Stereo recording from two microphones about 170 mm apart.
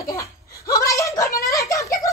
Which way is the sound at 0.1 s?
20° left (ahead or behind).